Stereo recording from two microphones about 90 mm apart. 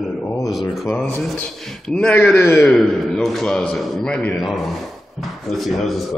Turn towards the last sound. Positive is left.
turn(degrees=0)  # may be behind; listen again after turning